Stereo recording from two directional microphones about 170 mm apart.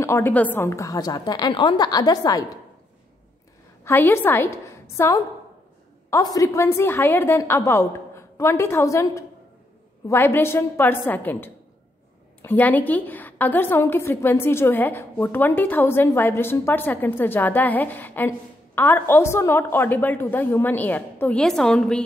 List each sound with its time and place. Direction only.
0.0 s a woman's voice: 15° left (ahead or behind)
3.8 s a woman's voice: 15° left (ahead or behind)